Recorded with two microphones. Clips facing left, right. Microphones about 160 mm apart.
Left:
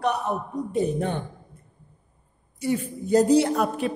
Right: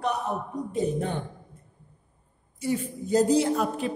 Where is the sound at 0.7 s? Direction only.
65° left (ahead or behind).